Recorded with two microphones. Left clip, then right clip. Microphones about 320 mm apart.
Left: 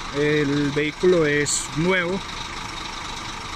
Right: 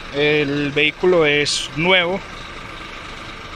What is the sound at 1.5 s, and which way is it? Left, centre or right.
Speech, centre.